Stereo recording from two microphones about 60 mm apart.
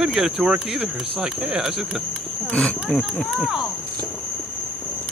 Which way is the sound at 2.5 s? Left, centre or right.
Centre.